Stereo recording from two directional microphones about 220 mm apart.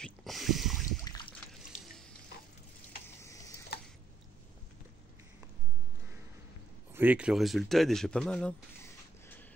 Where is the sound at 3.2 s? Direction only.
15° left (ahead or behind).